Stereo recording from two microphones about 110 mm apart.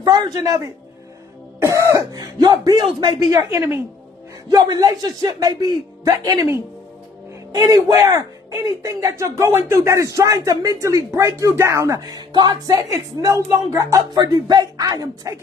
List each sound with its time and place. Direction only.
0.0 s speech: 35° right (ahead or behind)
1.6 s throat clearing: 30° right (ahead or behind)
2.1 s speech: 40° right (ahead or behind)
3.5 s speech: 25° right (ahead or behind)
12.1 s speech: 40° right (ahead or behind)
14.1 s speech: 40° right (ahead or behind)